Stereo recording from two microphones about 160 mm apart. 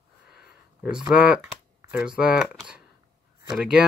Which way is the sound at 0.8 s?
5° right (ahead or behind).